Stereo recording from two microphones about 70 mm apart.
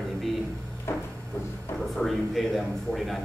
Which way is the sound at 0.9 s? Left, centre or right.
Left.